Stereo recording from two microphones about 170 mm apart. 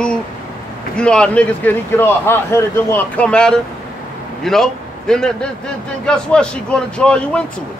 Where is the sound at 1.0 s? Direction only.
5° left (ahead or behind).